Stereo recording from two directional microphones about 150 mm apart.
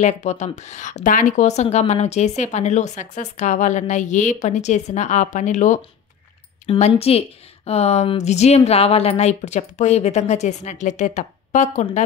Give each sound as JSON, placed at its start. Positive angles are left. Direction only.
{"t": 0.0, "sound": "speech", "side_deg": 50}
{"t": 6.7, "sound": "speech", "side_deg": 40}